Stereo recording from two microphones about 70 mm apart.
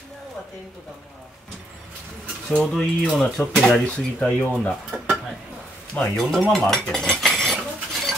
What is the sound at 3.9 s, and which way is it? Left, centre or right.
Speech, centre.